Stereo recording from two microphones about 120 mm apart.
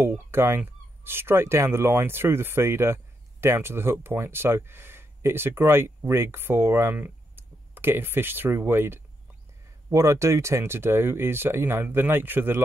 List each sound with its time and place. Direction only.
0.0 s speech: 20° right (ahead or behind)